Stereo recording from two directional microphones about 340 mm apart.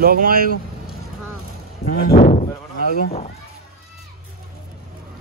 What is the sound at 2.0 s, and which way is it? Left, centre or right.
A child's voice, left.